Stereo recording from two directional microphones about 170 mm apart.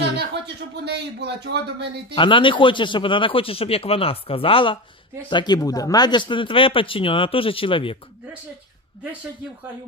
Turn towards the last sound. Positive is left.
turn(degrees=30)  # may be behind; listen again after turning